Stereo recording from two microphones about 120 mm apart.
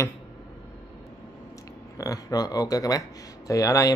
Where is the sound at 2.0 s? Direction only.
30° left (ahead or behind).